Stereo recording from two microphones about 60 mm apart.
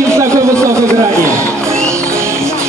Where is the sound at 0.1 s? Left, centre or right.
Right.